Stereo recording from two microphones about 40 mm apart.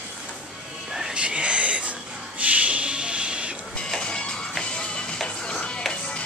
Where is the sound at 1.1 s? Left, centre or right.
Right.